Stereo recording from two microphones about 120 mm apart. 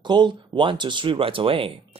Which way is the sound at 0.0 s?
40° right (ahead or behind).